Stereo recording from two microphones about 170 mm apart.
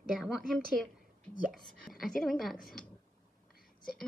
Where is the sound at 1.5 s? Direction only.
Centre (ahead or behind).